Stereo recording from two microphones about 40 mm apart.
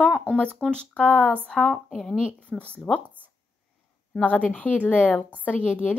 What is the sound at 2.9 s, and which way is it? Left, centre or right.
Speech, centre.